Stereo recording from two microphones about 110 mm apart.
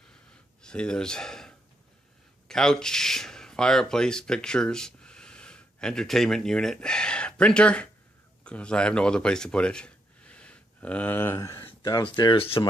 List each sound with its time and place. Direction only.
0.3 s gasp: 10° left (ahead or behind)
2.4 s speech: 5° left (ahead or behind); by 11.6 s 25° left (ahead or behind)
11.8 s speech: 40° left (ahead or behind)